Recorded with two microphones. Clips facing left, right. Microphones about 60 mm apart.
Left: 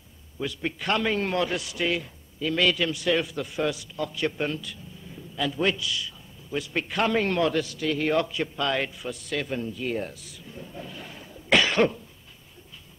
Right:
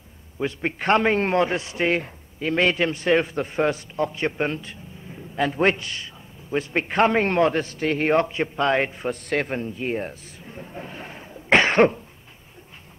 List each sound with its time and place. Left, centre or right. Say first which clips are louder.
0.4 s a man's voice: right 5 dB; right